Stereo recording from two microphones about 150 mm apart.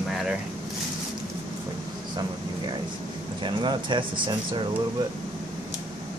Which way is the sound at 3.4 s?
30° right (ahead or behind).